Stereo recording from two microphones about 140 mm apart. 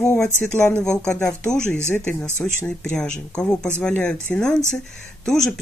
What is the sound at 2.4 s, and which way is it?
Speech, 5° left (ahead or behind).